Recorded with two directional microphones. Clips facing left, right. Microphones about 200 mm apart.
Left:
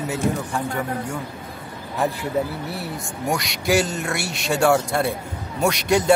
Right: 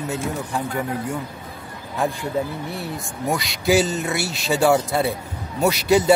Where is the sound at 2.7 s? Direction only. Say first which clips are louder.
Even; centre (ahead or behind).